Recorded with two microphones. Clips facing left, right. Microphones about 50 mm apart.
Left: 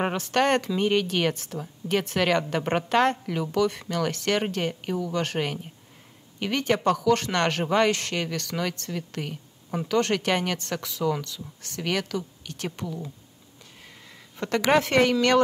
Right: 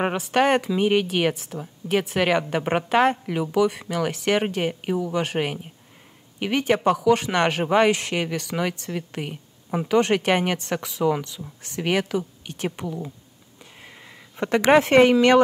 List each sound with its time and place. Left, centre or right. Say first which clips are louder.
0.0 s speech: right 3 dB; centre